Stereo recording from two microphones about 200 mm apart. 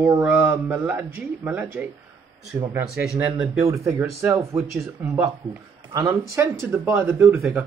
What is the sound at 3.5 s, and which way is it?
Mantra, 15° right (ahead or behind).